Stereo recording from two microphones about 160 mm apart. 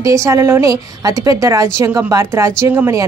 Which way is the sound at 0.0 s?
20° right (ahead or behind).